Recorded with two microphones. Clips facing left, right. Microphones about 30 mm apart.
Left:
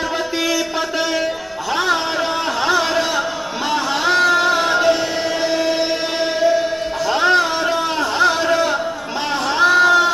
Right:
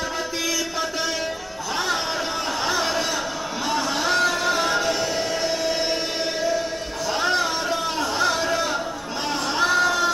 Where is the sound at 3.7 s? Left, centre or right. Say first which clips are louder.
Left 6 dB; left.